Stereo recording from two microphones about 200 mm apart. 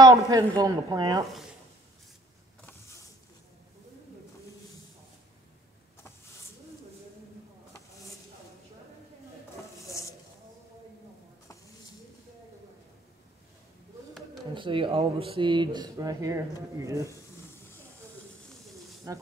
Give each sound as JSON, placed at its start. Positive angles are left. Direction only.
{"t": 0.0, "sound": "speech", "side_deg": -15}
{"t": 14.5, "sound": "speech", "side_deg": -25}
{"t": 19.1, "sound": "speech", "side_deg": -15}